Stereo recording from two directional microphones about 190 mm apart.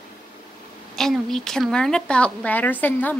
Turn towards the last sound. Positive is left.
turn(degrees=10)  # may be behind; listen again after turning